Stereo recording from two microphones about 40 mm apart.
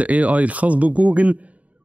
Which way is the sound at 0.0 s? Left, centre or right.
Right.